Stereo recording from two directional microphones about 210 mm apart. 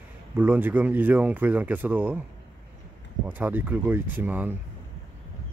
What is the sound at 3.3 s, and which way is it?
Speech, 10° right (ahead or behind).